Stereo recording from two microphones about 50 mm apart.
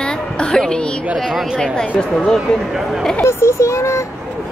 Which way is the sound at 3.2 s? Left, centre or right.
Left.